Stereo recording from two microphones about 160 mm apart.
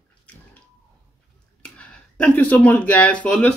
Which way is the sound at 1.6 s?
5° left (ahead or behind).